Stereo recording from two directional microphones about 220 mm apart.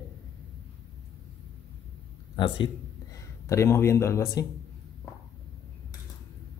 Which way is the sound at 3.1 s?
15° left (ahead or behind).